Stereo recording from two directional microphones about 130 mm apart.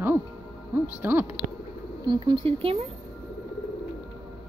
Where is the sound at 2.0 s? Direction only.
35° right (ahead or behind).